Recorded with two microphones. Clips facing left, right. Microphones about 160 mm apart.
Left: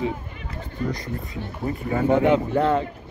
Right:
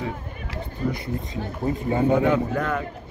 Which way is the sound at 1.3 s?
25° right (ahead or behind).